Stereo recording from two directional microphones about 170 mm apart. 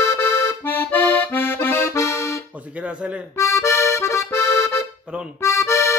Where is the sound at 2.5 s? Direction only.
10° right (ahead or behind).